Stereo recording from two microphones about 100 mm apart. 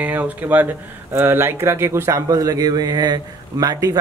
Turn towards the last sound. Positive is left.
turn(degrees=-35)  # may be behind; listen again after turning